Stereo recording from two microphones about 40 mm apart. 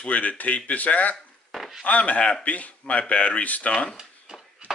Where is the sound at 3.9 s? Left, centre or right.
Centre.